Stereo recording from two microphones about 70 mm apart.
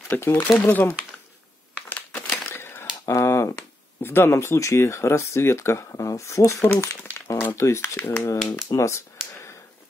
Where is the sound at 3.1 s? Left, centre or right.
Left.